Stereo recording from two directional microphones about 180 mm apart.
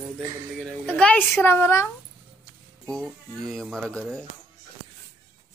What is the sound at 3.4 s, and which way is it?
Speech, centre (ahead or behind).